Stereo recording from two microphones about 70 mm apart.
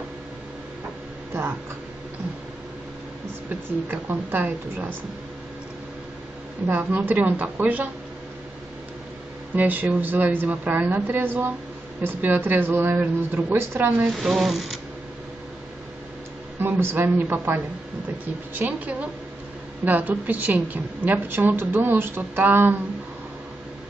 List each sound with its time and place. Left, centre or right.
3.4 s a woman's voice: right
6.7 s a woman's voice: right
9.6 s a woman's voice: right
14.2 s speech: centre
16.5 s a woman's voice: right